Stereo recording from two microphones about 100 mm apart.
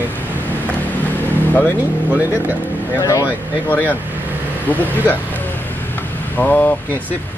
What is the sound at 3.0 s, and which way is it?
Speech, 30° left (ahead or behind).